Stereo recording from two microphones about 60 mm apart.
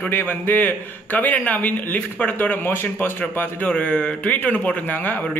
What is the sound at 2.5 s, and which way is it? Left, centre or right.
Speech, left.